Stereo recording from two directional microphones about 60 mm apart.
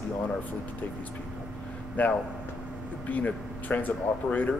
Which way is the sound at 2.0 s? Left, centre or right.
Left.